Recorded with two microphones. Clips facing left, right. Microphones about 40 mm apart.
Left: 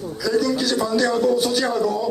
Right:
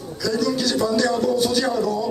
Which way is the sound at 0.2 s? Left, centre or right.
Centre.